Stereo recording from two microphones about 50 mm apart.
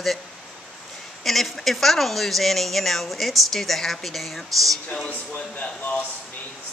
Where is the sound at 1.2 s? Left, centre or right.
Centre.